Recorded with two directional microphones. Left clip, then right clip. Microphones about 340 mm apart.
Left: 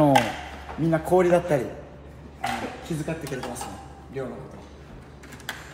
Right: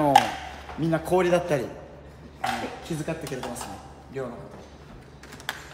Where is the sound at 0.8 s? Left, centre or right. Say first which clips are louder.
Left 2 dB; centre.